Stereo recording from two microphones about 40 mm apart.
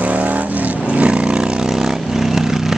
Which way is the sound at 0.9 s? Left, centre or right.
Right.